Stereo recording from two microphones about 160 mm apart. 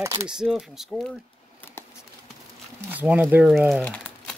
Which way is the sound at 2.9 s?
10° right (ahead or behind).